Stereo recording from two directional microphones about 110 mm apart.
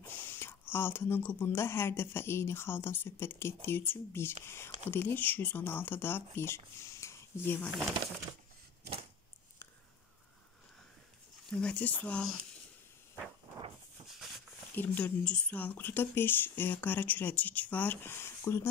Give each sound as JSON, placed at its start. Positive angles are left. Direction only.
{"t": 0.2, "sound": "speech", "side_deg": 20}
{"t": 11.5, "sound": "speech", "side_deg": 10}
{"t": 14.7, "sound": "speech", "side_deg": 15}